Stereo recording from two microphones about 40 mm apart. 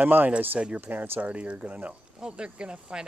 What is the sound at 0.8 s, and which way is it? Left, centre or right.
Speech, right.